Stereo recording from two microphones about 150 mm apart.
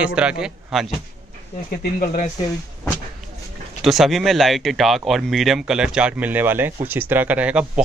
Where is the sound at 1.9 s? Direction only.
60° left (ahead or behind).